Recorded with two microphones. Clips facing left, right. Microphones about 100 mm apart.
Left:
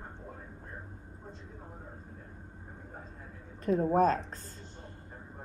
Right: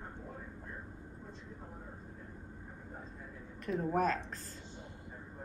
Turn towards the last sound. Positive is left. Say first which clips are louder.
# left 6 dB
turn(degrees=40)  # may be behind; listen again after turning